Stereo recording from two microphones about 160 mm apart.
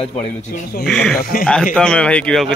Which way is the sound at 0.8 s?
5° left (ahead or behind).